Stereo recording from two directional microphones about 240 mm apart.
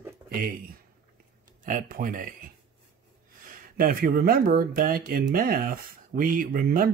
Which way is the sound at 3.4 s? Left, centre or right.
Right.